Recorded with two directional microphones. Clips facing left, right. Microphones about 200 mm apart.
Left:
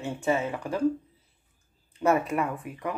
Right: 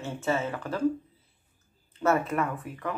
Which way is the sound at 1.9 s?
10° left (ahead or behind).